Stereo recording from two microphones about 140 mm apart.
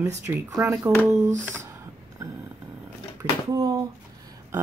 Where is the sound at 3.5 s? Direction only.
25° right (ahead or behind).